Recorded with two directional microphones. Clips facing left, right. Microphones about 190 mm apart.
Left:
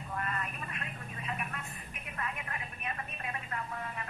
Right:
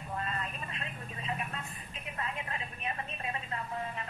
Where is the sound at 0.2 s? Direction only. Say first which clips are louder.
Even; 25° right (ahead or behind).